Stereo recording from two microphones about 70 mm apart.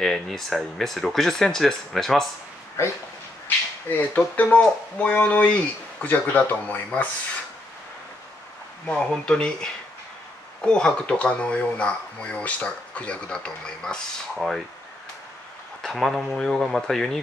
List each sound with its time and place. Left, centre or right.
0.0 s speech: centre
2.8 s speech: left
3.4 s speech: left
8.8 s speech: centre
15.8 s speech: centre